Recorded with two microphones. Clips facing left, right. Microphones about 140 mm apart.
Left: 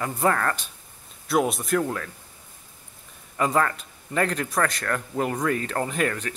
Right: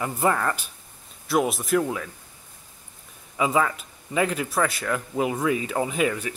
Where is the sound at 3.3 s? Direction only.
5° right (ahead or behind).